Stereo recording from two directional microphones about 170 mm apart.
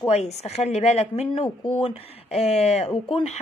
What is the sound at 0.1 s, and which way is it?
A woman's voice, 40° left (ahead or behind).